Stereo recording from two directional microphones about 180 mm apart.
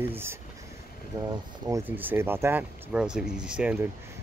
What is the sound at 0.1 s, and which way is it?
Speech, 15° right (ahead or behind).